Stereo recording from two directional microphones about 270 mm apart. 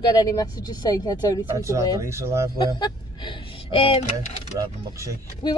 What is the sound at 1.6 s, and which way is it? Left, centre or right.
Speech, centre.